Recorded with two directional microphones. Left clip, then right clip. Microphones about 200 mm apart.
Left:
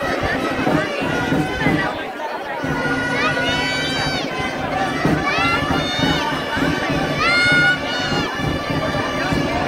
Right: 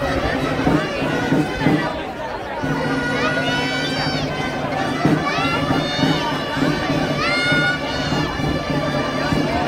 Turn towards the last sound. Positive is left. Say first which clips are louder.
# left 3 dB
turn(degrees=30)  # may be behind; listen again after turning